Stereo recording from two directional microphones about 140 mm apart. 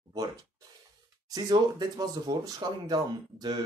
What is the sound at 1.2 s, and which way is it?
Speech, 30° right (ahead or behind).